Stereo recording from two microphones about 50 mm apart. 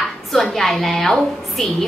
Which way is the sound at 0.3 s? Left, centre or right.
Centre.